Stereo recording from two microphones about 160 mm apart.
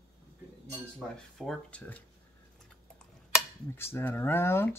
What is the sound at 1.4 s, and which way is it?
Speech, 5° left (ahead or behind).